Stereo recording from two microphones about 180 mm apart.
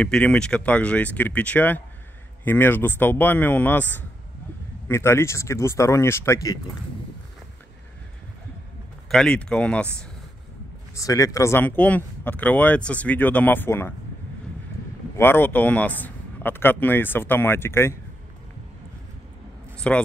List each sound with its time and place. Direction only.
0.0 s speech: 5° left (ahead or behind)
4.8 s speech: 15° left (ahead or behind)
9.1 s speech: 5° left (ahead or behind)
11.0 s speech: 20° left (ahead or behind)
15.1 s speech: 10° left (ahead or behind)
19.9 s speech: 5° left (ahead or behind)